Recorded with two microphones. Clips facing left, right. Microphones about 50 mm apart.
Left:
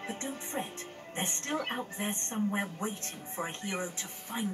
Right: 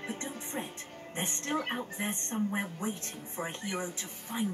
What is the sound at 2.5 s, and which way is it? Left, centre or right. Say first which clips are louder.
Speech: even; centre.